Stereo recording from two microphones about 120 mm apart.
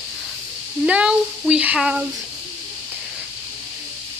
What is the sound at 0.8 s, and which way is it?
Speech, 10° right (ahead or behind).